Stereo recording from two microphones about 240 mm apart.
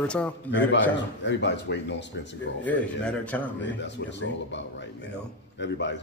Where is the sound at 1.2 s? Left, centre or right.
Left.